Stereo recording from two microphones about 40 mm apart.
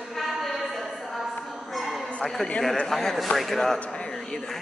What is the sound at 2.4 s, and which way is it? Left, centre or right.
A man's voice, centre.